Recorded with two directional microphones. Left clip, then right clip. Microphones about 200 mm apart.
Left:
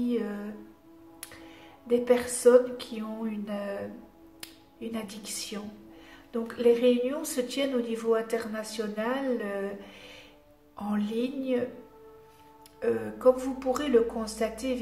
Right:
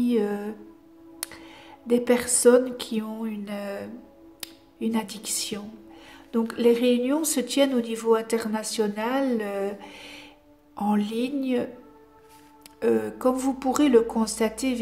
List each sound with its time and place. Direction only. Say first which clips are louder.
0.0 s speech: right 6 dB; 50° right (ahead or behind)
1.9 s speech: right 2 dB; 50° right (ahead or behind)
12.8 s speech: right 1 dB; 50° right (ahead or behind)